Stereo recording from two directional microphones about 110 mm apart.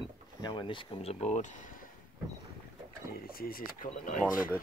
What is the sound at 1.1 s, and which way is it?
Speech, 90° left.